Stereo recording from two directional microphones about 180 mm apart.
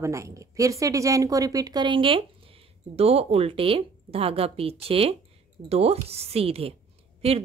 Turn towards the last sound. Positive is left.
turn(degrees=-30)  # may be behind; listen again after turning